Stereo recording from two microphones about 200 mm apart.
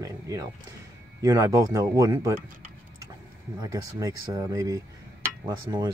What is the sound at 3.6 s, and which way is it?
Speech, 15° right (ahead or behind).